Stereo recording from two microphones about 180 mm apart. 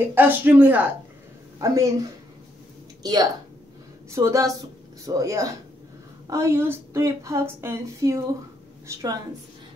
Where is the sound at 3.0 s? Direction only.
20° right (ahead or behind).